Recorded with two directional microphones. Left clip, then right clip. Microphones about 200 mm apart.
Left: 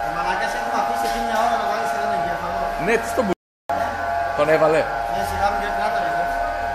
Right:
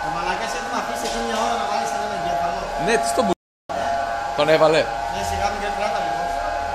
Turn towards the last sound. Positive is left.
turn(degrees=-20)  # may be behind; listen again after turning